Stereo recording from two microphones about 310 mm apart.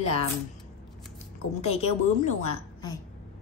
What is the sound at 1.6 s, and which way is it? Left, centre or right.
Speech, centre.